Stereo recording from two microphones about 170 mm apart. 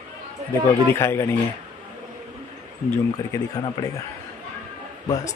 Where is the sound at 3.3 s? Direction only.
25° left (ahead or behind).